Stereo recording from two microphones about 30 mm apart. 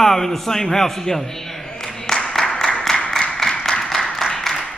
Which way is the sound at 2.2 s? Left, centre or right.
Centre.